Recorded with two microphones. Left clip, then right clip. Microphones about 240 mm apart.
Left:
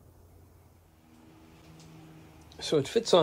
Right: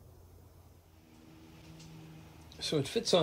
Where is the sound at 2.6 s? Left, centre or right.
Centre.